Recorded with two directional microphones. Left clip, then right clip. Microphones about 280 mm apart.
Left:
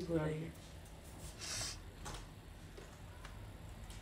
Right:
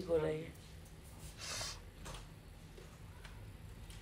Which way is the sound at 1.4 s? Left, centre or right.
Centre.